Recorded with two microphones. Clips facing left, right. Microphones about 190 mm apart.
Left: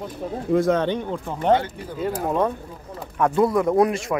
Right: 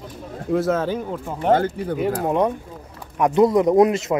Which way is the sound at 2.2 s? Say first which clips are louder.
Right 2 dB; 20° right (ahead or behind).